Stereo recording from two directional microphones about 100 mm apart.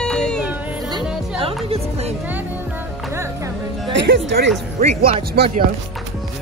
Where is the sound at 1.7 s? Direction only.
90° right.